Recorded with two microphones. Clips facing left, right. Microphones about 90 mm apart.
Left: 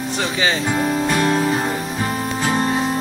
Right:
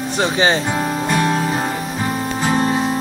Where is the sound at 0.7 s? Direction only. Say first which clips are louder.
Even; centre (ahead or behind).